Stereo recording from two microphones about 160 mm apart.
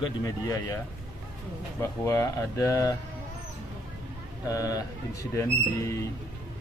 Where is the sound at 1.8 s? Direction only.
20° left (ahead or behind).